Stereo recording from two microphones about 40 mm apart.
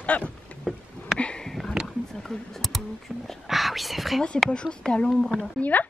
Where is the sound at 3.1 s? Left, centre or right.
Centre.